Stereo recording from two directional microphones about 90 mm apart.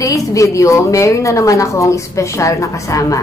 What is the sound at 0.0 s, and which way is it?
A woman's voice, 40° left (ahead or behind).